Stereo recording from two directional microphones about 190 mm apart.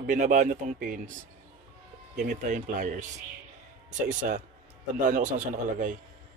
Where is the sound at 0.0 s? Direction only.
45° right (ahead or behind).